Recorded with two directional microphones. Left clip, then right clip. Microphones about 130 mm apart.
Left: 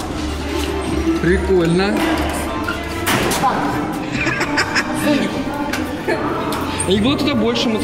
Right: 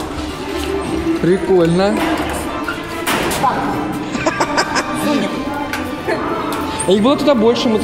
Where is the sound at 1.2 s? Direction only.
20° right (ahead or behind).